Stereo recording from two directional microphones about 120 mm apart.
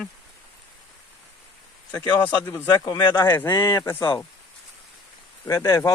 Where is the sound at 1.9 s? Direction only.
15° left (ahead or behind).